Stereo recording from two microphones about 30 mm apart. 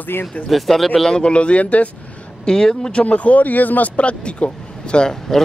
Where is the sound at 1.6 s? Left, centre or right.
Left.